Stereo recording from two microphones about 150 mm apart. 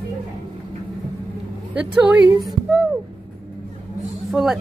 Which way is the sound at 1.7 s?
10° right (ahead or behind).